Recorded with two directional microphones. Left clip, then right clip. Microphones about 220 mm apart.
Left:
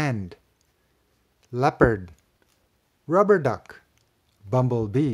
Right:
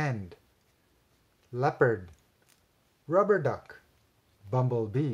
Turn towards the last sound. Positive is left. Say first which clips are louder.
# left 6 dB
turn(degrees=40)  # may be behind; listen again after turning